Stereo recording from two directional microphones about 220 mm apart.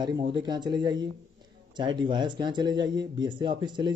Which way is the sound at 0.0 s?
20° right (ahead or behind).